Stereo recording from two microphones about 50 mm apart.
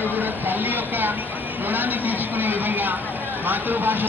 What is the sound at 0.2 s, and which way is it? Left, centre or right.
Vehicle, right.